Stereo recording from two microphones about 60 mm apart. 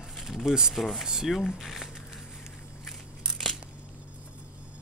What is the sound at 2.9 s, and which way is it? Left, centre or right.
Crushing, centre.